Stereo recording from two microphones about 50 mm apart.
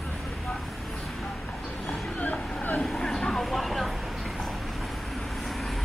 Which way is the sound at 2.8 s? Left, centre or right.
Centre.